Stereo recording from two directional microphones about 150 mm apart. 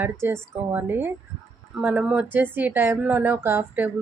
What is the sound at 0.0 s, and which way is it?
Speech, 15° right (ahead or behind).